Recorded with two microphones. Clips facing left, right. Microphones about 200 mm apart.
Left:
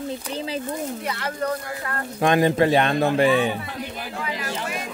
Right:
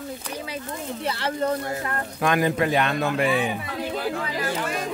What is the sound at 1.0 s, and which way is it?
Speech, 30° right (ahead or behind).